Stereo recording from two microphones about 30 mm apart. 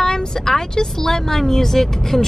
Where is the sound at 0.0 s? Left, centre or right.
Centre.